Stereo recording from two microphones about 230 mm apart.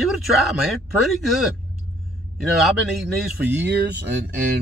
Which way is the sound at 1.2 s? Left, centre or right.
Centre.